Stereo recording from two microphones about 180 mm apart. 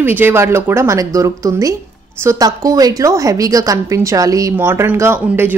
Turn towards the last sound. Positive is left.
turn(degrees=-15)  # may be behind; listen again after turning